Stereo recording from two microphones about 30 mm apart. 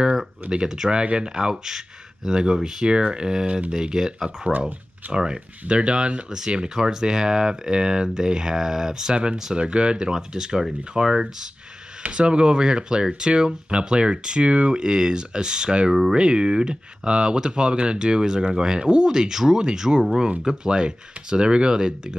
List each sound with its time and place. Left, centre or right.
0.4 s speech: right
0.8 s speech: right
4.5 s speech: right
5.1 s speech: right
10.1 s speech: right
12.1 s speech: right
18.8 s speech: right
19.1 s speech: centre